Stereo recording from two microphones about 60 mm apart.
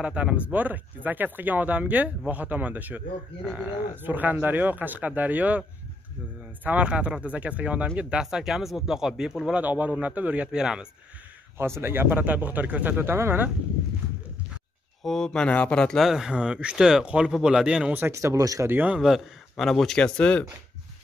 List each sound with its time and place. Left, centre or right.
0.0 s speech: centre
6.6 s speech: right
8.2 s speech: centre
9.5 s speech: right
10.5 s speech: centre
11.8 s speech: right
13.0 s speech: right
15.0 s speech: centre
15.4 s speech: left
16.0 s speech: centre
18.1 s speech: right
18.7 s speech: right
18.9 s a man's voice: centre
20.2 s speech: centre